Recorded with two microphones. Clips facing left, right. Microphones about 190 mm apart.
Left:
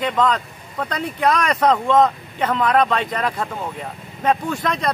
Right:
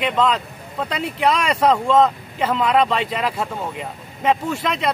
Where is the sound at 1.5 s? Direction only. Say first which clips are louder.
Even; 10° right (ahead or behind).